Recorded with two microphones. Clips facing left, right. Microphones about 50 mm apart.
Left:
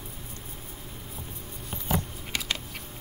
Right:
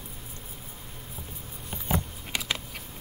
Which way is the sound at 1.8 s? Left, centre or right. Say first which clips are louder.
Even; centre.